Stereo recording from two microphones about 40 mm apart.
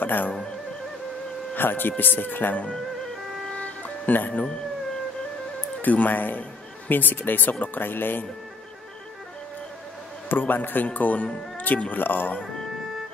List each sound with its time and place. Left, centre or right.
0.0 s speech: left
1.5 s speech: left
3.5 s music: left
5.8 s speech: left
7.5 s speech: left
7.8 s speech: left
10.2 s speech: left
10.9 s speech: left
11.5 s music: left
11.9 s speech: left